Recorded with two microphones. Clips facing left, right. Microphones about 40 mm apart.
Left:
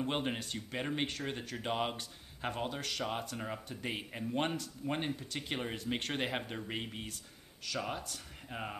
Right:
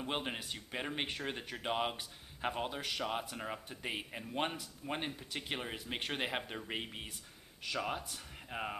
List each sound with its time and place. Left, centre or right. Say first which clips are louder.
0.0 s speech: left 3 dB; centre